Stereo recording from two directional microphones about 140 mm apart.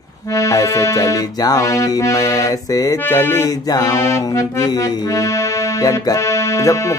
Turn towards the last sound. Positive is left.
turn(degrees=20)  # may be behind; listen again after turning